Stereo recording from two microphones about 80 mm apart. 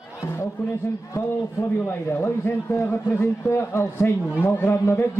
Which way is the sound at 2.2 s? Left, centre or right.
Left.